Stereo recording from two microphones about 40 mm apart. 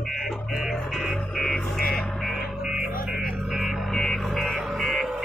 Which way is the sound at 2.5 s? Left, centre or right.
Centre.